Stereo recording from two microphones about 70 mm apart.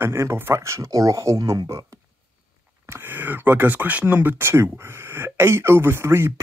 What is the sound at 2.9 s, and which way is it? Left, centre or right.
Speech, right.